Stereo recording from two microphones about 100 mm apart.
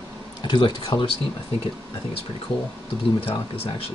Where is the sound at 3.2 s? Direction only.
75° left (ahead or behind).